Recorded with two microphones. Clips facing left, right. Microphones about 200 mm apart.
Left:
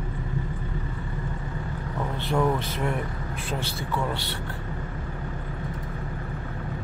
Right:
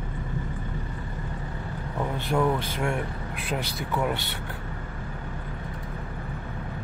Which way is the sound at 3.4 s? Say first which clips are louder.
Right 1 dB; 15° right (ahead or behind).